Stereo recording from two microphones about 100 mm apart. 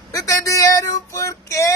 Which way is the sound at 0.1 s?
35° left (ahead or behind).